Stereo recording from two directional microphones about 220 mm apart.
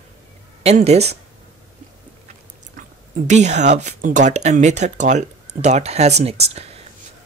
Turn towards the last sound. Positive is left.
turn(degrees=-30)  # may be behind; listen again after turning